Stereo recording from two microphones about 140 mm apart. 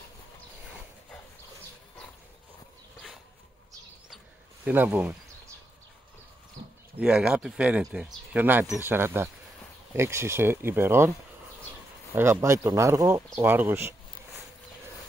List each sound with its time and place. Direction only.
4.6 s speech: 10° right (ahead or behind)
7.0 s speech: 5° right (ahead or behind)
12.2 s speech: 20° right (ahead or behind)